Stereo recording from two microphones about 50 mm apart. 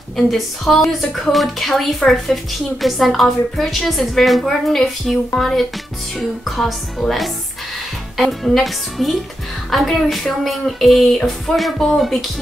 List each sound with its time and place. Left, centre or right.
0.3 s a woman's voice: centre
8.6 s a woman's voice: centre